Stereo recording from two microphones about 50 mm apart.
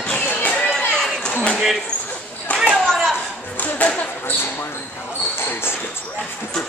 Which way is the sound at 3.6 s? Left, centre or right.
Left.